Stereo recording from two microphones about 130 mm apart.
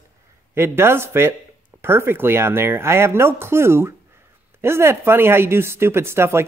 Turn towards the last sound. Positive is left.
turn(degrees=-20)  # may be behind; listen again after turning